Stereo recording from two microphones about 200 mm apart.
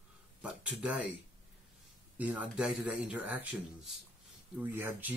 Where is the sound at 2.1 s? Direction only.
10° right (ahead or behind).